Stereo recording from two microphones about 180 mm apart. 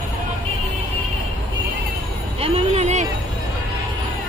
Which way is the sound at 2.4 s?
35° right (ahead or behind).